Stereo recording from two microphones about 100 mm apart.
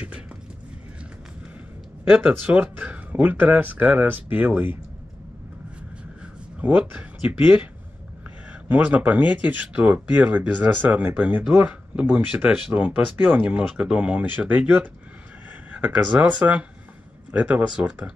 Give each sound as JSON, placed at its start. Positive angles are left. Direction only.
{"t": 2.0, "sound": "speech", "side_deg": -15}
{"t": 6.6, "sound": "speech", "side_deg": -15}
{"t": 8.6, "sound": "speech", "side_deg": -15}